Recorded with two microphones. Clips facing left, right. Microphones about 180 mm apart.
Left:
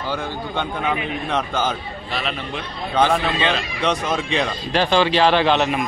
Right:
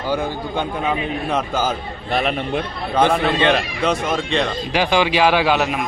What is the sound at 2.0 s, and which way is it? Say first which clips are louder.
Speech: right 7 dB; 55° right (ahead or behind).